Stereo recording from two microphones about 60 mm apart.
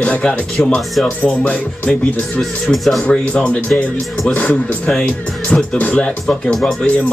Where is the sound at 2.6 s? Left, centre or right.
Centre.